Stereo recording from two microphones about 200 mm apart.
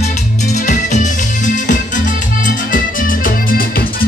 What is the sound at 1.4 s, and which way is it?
Music, 40° left (ahead or behind).